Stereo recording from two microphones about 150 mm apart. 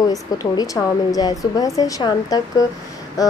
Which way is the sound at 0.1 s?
25° left (ahead or behind).